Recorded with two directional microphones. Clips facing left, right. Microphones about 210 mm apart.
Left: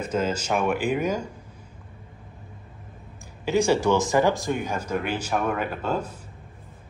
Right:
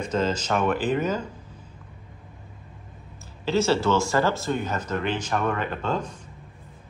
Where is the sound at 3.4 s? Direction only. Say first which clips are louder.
Left 1 dB; 15° left (ahead or behind).